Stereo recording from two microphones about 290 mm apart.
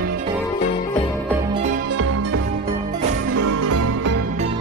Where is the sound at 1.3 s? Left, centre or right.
Centre.